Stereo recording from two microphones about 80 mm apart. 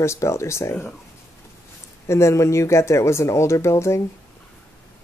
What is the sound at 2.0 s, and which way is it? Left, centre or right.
Speech, left.